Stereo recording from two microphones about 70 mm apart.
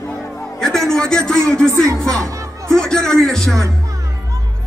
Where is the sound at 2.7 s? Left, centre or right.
Centre.